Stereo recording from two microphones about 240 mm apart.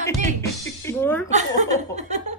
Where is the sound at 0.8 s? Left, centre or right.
Centre.